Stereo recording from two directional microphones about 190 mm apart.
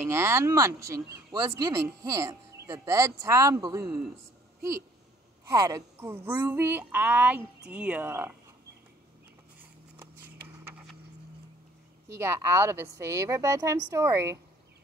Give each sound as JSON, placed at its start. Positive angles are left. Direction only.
{"t": 0.0, "sound": "speech", "side_deg": -15}
{"t": 5.4, "sound": "speech", "side_deg": -15}
{"t": 9.6, "sound": "a sound", "side_deg": -10}
{"t": 12.1, "sound": "speech", "side_deg": -15}